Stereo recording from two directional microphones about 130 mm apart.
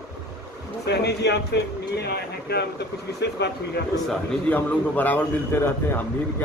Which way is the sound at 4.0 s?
5° left (ahead or behind).